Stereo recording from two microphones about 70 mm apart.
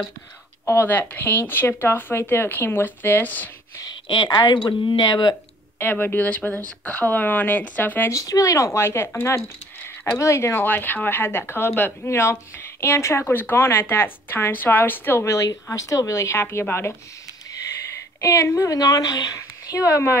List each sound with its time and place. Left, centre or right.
0.7 s speech: left
3.8 s speech: left
5.8 s speech: left
8.1 s speech: left
8.8 s speech: left
16.3 s speech: left
18.2 s speech: left
18.7 s speech: left